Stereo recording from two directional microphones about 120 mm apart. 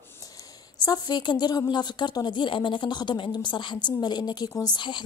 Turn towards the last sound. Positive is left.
turn(degrees=35)  # may be behind; listen again after turning